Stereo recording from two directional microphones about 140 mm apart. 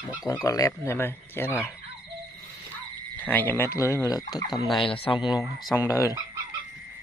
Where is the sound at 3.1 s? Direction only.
10° left (ahead or behind).